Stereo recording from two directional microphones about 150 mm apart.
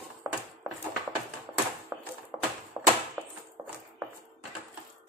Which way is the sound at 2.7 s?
25° right (ahead or behind).